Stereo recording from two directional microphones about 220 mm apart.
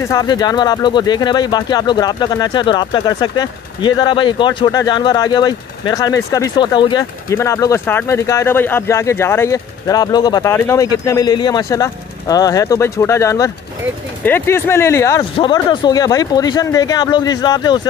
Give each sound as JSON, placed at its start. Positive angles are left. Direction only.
{"t": 0.0, "sound": "speech", "side_deg": 15}